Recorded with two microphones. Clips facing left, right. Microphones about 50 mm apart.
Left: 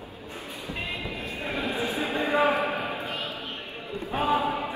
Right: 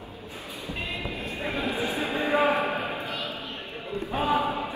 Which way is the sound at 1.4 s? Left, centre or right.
Right.